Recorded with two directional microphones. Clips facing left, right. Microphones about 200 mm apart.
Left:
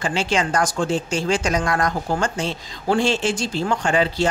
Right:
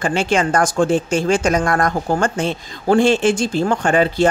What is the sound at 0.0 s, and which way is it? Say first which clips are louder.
Speech: right 4 dB; 50° right (ahead or behind).